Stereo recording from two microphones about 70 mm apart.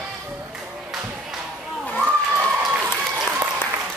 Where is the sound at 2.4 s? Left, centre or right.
Centre.